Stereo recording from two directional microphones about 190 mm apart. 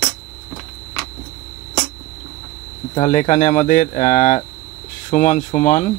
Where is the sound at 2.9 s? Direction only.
35° left (ahead or behind).